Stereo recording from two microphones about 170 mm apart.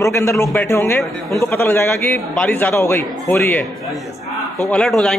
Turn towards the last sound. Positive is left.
turn(degrees=5)  # may be behind; listen again after turning